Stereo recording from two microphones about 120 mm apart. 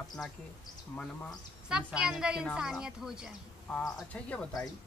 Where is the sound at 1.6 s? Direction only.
5° right (ahead or behind).